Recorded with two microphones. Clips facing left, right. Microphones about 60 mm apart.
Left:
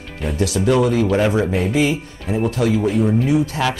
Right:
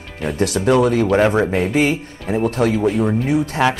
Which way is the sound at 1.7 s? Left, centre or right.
Right.